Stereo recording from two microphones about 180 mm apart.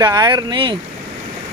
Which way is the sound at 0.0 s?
20° right (ahead or behind).